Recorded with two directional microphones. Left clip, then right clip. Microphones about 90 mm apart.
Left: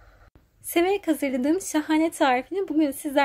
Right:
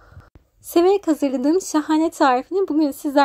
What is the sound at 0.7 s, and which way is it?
Speech, 65° right (ahead or behind).